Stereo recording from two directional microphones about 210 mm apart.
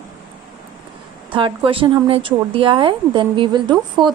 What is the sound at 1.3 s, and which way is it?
A woman's voice, 25° right (ahead or behind).